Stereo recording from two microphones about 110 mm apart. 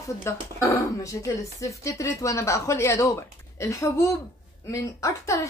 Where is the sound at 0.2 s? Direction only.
25° left (ahead or behind).